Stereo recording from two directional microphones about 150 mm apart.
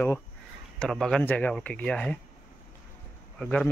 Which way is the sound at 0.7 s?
5° left (ahead or behind).